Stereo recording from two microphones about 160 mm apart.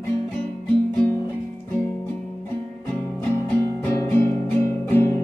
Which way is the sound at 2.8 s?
15° left (ahead or behind).